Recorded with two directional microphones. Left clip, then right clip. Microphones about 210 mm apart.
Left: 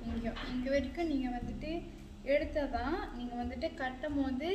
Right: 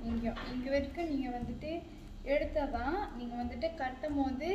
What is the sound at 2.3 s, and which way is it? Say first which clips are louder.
A woman's voice: even; 15° left (ahead or behind).